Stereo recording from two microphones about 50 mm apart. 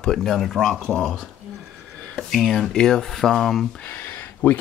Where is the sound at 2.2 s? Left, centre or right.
Centre.